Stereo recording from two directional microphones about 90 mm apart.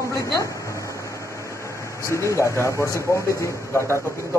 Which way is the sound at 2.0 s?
30° left (ahead or behind).